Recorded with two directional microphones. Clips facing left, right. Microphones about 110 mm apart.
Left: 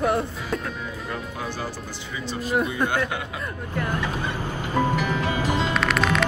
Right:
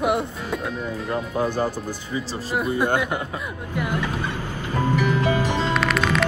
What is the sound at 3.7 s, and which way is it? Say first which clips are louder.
Speech: right 2 dB; 10° right (ahead or behind).